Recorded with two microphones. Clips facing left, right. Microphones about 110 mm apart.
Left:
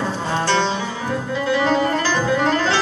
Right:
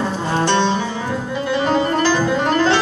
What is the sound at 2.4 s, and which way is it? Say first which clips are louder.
Music: right 3 dB; 20° right (ahead or behind).